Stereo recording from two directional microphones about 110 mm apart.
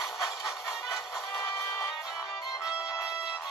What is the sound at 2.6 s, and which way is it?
Music, 5° right (ahead or behind).